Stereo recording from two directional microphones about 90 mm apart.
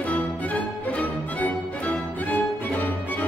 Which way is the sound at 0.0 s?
15° left (ahead or behind).